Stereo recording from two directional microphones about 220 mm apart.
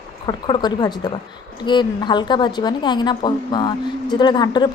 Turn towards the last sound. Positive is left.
turn(degrees=20)  # may be behind; listen again after turning